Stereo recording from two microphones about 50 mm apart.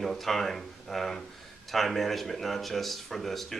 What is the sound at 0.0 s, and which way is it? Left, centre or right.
Speech, centre.